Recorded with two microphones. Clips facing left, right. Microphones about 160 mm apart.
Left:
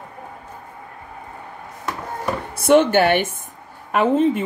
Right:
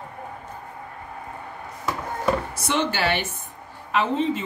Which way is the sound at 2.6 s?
55° left (ahead or behind).